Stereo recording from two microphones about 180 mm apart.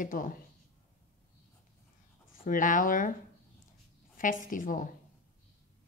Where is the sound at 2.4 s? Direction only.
50° left (ahead or behind).